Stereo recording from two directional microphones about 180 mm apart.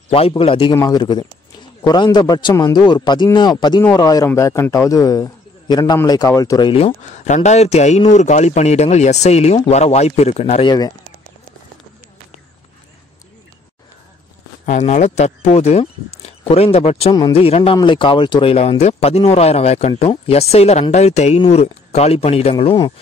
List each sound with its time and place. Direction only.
0.1 s a man's voice: 30° left (ahead or behind)
6.7 s speech: 40° left (ahead or behind)
14.7 s speech: 40° left (ahead or behind)